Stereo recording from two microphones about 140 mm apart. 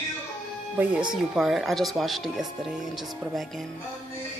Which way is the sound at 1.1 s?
Centre (ahead or behind).